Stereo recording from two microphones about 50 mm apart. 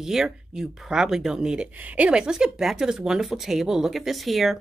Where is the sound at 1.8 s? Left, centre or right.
Right.